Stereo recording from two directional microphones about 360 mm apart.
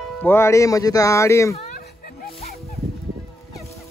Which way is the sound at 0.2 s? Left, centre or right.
Centre.